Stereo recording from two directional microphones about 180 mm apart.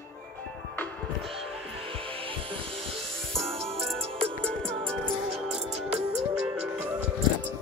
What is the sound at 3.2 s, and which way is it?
Music, centre (ahead or behind).